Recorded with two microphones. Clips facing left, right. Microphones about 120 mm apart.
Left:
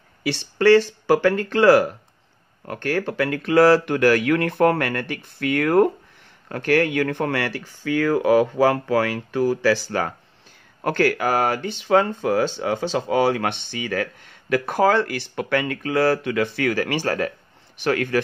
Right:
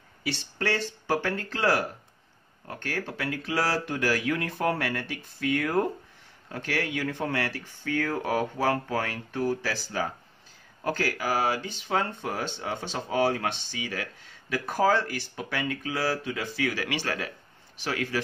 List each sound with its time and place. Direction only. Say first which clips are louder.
0.2 s speech: left 11 dB; 75° left (ahead or behind); by 17.3 s 45° left (ahead or behind)
17.7 s speech: left 9 dB; 60° left (ahead or behind)